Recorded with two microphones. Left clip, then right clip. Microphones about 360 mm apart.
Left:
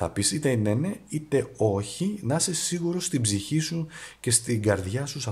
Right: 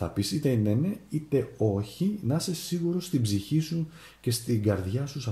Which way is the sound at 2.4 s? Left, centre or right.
Centre.